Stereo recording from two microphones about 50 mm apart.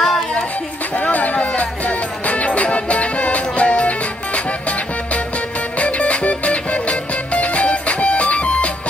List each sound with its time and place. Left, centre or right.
0.0 s music: centre
1.1 s a sound: left
2.2 s music: left